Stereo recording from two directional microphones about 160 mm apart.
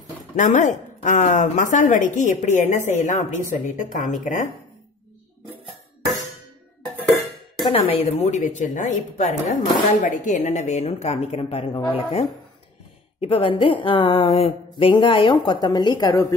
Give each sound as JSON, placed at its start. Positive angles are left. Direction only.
{"t": 0.4, "sound": "a woman's voice", "side_deg": 50}
{"t": 7.1, "sound": "music", "side_deg": 0}
{"t": 7.6, "sound": "a woman's voice", "side_deg": 35}